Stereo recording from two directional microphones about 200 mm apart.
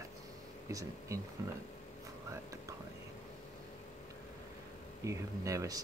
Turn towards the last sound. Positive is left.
turn(degrees=-15)  # may be behind; listen again after turning